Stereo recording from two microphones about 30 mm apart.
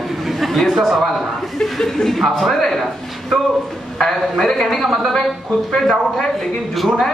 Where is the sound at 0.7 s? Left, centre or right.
Centre.